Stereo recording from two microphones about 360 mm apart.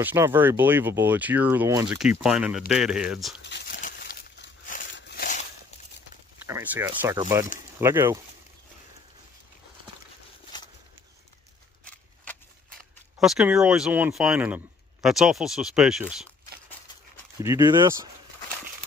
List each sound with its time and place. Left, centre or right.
0.0 s speech: centre
3.4 s a sound: left
6.4 s speech: centre
13.2 s speech: centre
17.4 s speech: centre